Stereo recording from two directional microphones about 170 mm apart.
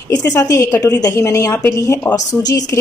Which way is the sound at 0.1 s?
20° left (ahead or behind).